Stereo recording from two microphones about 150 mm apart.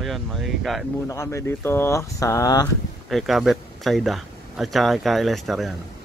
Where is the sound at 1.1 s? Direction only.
20° left (ahead or behind).